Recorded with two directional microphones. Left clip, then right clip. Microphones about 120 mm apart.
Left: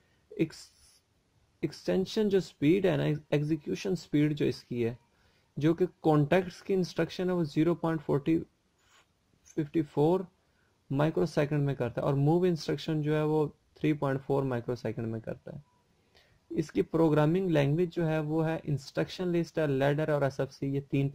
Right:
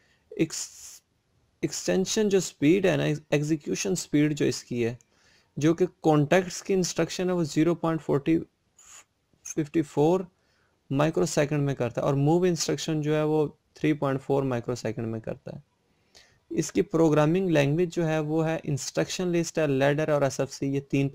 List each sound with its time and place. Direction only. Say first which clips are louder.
0.3 s a sound: right 4 dB; 35° right (ahead or behind)
1.6 s speech: right 4 dB; 35° right (ahead or behind)
9.5 s speech: right 4 dB; 35° right (ahead or behind)